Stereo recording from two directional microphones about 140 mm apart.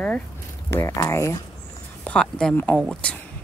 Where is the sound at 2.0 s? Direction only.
5° left (ahead or behind).